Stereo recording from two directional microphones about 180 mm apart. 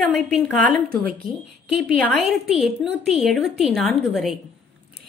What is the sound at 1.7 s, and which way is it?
A woman's voice, centre (ahead or behind).